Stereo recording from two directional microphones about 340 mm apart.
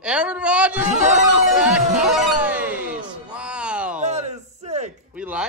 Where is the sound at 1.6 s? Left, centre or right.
Centre.